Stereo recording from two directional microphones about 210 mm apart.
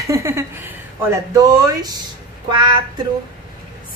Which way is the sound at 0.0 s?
15° right (ahead or behind).